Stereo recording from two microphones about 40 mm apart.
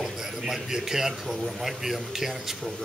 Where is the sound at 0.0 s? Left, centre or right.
Centre.